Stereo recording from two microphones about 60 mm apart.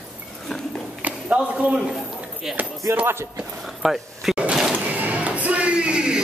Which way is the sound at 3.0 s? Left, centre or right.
Right.